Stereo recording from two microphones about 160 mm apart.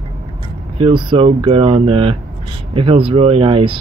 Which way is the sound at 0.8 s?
35° right (ahead or behind).